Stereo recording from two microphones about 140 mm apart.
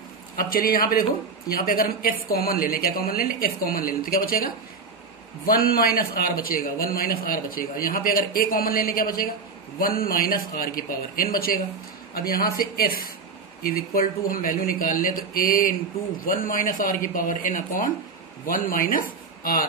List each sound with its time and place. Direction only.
0.4 s a woman's voice: 90° left; by 17.8 s 70° left (ahead or behind)
18.5 s speech: 90° left